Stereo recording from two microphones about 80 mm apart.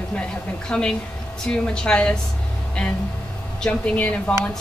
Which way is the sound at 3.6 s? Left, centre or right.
Centre.